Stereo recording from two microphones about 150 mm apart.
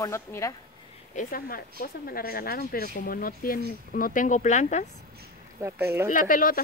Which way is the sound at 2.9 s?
70° left (ahead or behind).